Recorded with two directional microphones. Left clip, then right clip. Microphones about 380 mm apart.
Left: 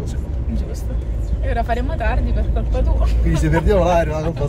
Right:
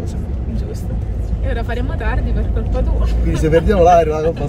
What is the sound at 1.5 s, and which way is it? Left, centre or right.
Speech, centre.